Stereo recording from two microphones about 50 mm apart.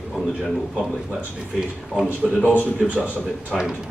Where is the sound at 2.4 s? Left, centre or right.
Left.